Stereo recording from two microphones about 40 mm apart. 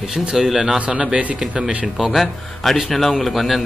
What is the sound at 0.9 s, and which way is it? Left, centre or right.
Speech, right.